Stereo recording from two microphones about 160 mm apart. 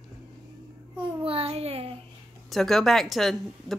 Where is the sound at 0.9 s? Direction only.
35° right (ahead or behind).